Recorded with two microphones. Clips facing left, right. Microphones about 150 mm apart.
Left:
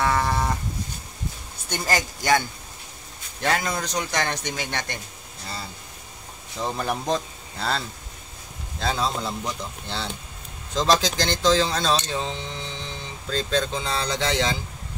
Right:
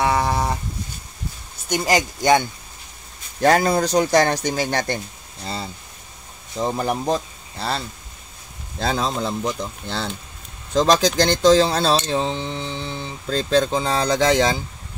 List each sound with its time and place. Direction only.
0.0 s livestock: 15° right (ahead or behind)
1.7 s speech: 20° right (ahead or behind)
3.3 s speech: 40° right (ahead or behind)
6.6 s speech: 15° right (ahead or behind)
7.5 s speech: 5° right (ahead or behind)
8.7 s speech: 40° right (ahead or behind)